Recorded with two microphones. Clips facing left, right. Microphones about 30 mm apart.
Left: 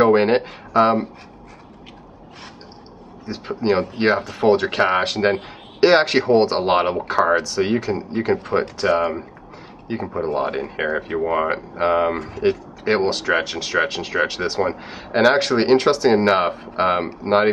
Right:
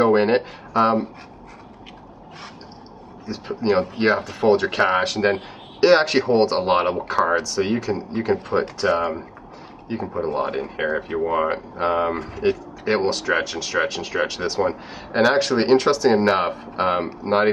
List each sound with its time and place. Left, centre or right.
0.0 s speech: centre
3.3 s speech: centre